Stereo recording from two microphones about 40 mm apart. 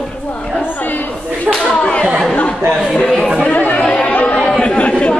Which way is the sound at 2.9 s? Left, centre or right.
Centre.